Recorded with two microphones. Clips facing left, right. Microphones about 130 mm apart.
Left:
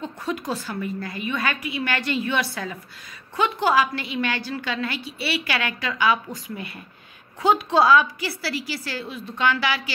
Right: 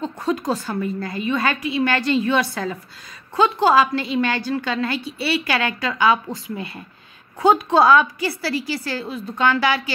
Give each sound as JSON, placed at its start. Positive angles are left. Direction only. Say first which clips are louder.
{"t": 0.0, "sound": "a woman's voice", "louder": "right 6 dB", "side_deg": -40}
{"t": 2.2, "sound": "a woman's voice", "louder": "right 5 dB", "side_deg": -45}
{"t": 3.3, "sound": "a woman's voice", "louder": "right 5 dB", "side_deg": -30}
{"t": 7.3, "sound": "a woman's voice", "louder": "right 3 dB", "side_deg": -50}